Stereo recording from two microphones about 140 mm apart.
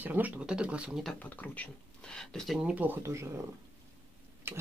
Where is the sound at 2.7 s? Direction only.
15° right (ahead or behind).